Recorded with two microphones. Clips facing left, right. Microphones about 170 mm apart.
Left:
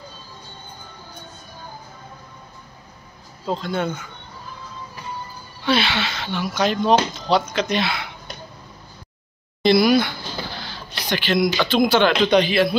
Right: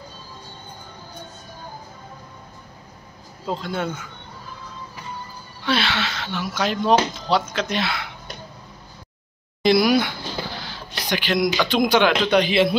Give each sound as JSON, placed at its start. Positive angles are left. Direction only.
{"t": 3.4, "sound": "speech", "side_deg": -5}
{"t": 5.7, "sound": "speech", "side_deg": 0}
{"t": 9.6, "sound": "a sound", "side_deg": -10}
{"t": 11.3, "sound": "speech", "side_deg": 5}
{"t": 11.6, "sound": "speech", "side_deg": -15}
{"t": 12.4, "sound": "a man's voice", "side_deg": -20}